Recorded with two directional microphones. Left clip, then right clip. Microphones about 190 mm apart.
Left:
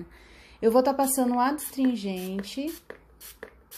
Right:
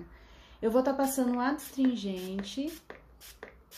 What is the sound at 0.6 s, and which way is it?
A woman's voice, 30° left (ahead or behind).